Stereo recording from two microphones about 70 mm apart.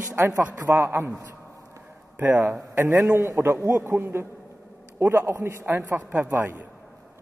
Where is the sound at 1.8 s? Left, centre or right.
Right.